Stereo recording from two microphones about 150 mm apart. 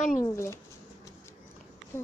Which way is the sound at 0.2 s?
20° left (ahead or behind).